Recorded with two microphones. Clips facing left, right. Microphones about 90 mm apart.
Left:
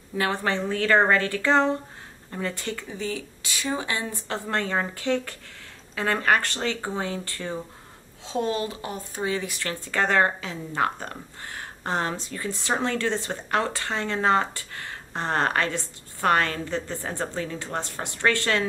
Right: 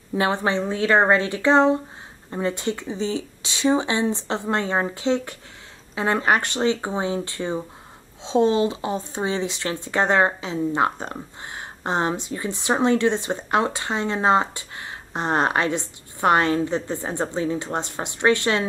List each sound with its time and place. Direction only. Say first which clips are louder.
0.1 s speech: right 4 dB; 20° right (ahead or behind)